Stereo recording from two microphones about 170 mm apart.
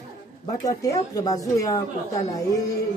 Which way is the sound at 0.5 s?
20° left (ahead or behind).